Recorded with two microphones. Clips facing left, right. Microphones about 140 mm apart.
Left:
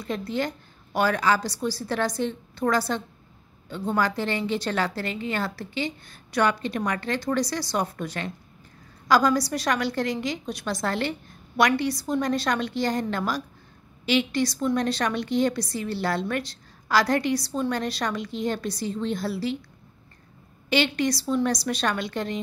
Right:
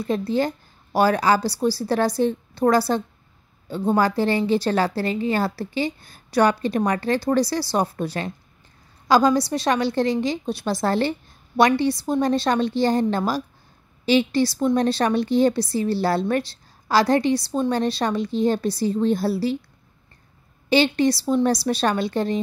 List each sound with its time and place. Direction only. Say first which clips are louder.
0.0 s a woman's voice: right 6 dB; 30° right (ahead or behind)
20.7 s a woman's voice: right 5 dB; 30° right (ahead or behind)